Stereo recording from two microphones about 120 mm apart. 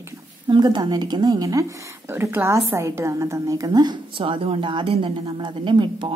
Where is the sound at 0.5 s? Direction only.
40° right (ahead or behind).